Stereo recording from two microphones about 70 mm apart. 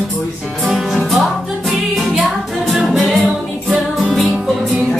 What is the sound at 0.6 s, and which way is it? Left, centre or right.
Music, centre.